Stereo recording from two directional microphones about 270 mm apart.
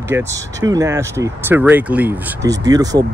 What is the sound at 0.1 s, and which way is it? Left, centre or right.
Speech, centre.